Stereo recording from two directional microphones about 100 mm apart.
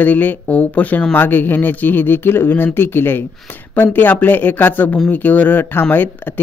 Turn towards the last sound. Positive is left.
turn(degrees=20)  # may be behind; listen again after turning